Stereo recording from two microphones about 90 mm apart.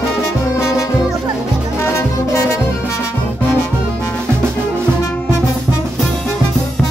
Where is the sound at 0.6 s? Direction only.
35° left (ahead or behind).